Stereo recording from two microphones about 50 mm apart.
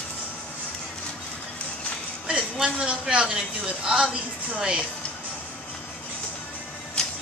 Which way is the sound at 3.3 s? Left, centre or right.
Centre.